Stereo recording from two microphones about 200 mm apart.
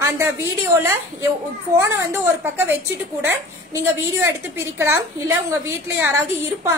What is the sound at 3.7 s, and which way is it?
A woman's voice, 15° right (ahead or behind).